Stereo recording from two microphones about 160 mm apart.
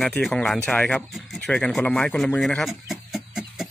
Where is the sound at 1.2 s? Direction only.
5° left (ahead or behind).